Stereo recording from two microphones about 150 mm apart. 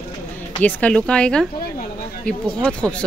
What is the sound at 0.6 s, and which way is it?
Speech, 10° left (ahead or behind).